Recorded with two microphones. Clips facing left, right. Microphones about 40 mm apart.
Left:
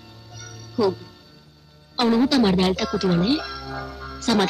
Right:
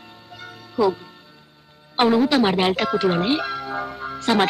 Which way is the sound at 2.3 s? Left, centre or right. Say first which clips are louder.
Right 1 dB; right.